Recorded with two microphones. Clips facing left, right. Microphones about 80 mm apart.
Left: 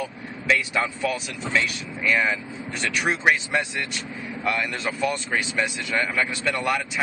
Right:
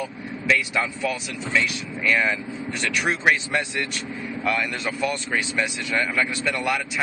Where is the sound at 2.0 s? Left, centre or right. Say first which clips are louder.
Even; centre.